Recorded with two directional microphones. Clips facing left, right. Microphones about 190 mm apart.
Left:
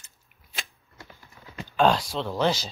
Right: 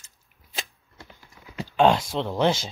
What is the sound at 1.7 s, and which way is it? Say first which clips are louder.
Speech: right 2 dB; 25° right (ahead or behind).